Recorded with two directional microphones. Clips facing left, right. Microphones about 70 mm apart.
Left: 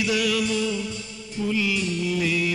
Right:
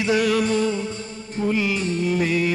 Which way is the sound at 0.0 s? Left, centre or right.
Right.